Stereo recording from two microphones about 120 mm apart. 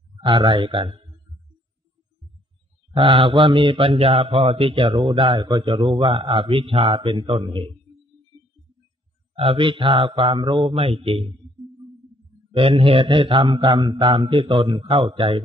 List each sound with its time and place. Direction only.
0.2 s mantra: 40° right (ahead or behind)
2.9 s mantra: 45° right (ahead or behind)
9.3 s mantra: 50° right (ahead or behind)
12.5 s mantra: 55° right (ahead or behind)